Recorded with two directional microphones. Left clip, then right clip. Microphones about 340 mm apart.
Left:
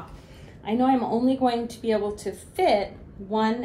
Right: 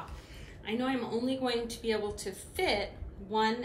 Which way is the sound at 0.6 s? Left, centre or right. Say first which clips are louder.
Left 11 dB; centre.